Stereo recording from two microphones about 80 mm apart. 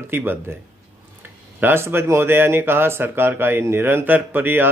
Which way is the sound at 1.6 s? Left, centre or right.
Right.